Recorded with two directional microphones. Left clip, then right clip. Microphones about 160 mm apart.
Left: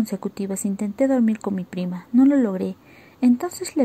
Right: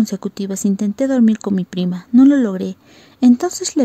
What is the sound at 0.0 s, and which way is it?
A woman's voice, 35° right (ahead or behind).